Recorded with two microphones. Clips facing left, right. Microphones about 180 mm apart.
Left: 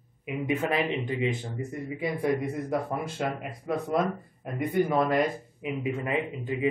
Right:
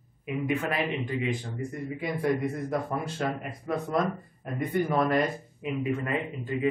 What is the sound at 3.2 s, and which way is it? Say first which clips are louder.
Speech: even; 15° left (ahead or behind).